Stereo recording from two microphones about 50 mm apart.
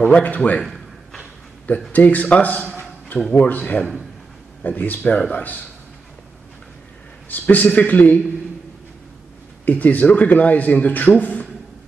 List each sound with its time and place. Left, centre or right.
0.0 s a man's voice: left
1.9 s a man's voice: left
7.2 s a man's voice: left
9.7 s a man's voice: left